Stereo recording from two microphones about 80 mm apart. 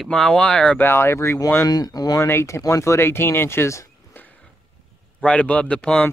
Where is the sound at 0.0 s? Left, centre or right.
Centre.